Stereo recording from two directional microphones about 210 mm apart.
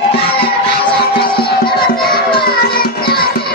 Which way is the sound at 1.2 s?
45° left (ahead or behind).